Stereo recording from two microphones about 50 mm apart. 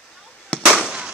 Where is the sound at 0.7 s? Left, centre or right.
Centre.